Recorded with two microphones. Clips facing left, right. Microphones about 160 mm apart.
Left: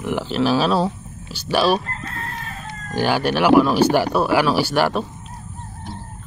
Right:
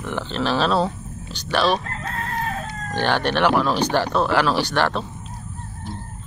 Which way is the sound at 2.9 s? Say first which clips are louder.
Left 2 dB; 10° left (ahead or behind).